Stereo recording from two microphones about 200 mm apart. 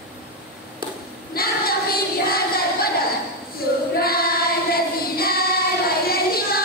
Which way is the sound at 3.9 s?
50° left (ahead or behind).